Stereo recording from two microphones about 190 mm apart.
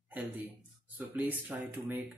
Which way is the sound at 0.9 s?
10° right (ahead or behind).